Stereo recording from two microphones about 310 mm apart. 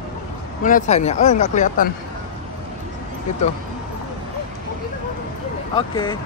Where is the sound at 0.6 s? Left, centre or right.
Left.